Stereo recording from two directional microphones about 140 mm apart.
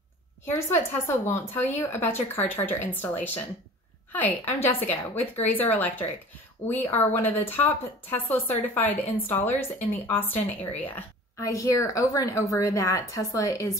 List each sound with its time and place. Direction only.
0.5 s a woman's voice: 15° left (ahead or behind)